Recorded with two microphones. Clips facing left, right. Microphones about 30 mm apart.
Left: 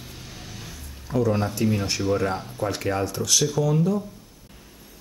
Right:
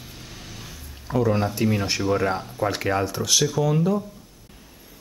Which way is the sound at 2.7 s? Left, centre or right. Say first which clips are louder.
Right 2 dB; centre.